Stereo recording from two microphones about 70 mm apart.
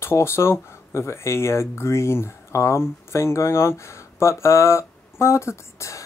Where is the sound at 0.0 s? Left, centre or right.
Left.